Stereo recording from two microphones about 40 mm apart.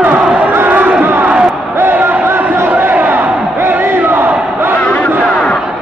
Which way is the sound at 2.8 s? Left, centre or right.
Right.